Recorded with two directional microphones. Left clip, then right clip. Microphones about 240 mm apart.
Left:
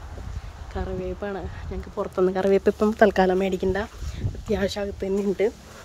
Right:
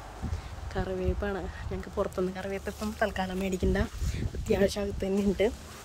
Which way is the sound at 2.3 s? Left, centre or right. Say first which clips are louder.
Left 15 dB; left.